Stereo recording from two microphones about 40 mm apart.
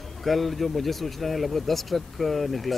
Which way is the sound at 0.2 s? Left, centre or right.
Centre.